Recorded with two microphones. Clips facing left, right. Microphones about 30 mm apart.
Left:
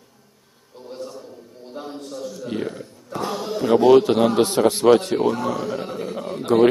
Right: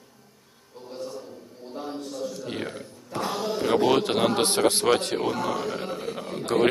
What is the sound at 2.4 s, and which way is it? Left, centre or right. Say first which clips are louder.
Speech: left 5 dB; centre.